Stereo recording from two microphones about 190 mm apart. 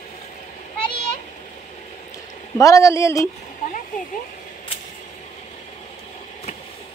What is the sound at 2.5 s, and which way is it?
Speech, 15° left (ahead or behind).